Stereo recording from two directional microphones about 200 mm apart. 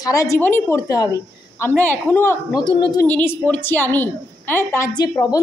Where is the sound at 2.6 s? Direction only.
25° left (ahead or behind).